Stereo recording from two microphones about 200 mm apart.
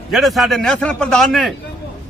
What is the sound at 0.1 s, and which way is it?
A man's voice, centre (ahead or behind).